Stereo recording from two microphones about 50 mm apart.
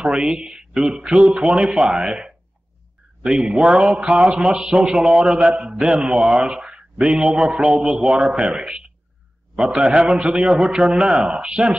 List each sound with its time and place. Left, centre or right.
0.0 s speech: centre